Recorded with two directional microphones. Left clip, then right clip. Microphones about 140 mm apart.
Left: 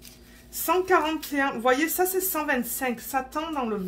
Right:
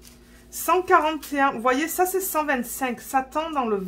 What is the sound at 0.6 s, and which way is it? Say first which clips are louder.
A woman's voice: right 3 dB; 50° right (ahead or behind).